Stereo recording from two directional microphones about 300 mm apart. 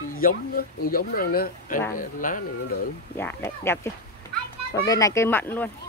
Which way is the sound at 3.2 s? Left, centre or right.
Centre.